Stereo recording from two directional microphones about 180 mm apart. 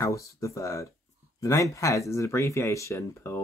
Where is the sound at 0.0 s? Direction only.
15° left (ahead or behind).